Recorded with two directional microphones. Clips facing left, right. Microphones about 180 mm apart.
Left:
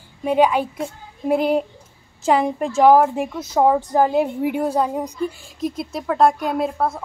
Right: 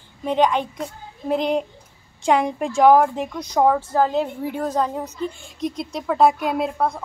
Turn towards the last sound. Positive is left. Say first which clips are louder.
# left 1 dB
turn(degrees=0)  # may be behind; listen again after turning